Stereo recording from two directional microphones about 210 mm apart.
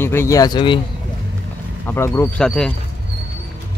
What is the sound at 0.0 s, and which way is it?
Speech, 10° left (ahead or behind).